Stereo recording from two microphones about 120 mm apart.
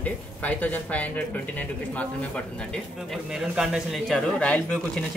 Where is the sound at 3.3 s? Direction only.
5° right (ahead or behind).